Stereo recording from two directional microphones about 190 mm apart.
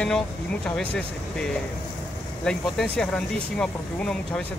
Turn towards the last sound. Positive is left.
turn(degrees=5)  # may be behind; listen again after turning